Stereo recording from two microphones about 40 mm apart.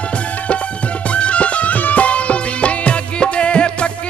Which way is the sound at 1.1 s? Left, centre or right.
Left.